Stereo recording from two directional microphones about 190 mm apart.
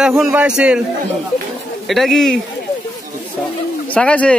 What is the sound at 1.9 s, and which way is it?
Speech, centre (ahead or behind).